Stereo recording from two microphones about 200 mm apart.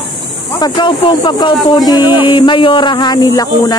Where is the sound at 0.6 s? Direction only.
25° left (ahead or behind).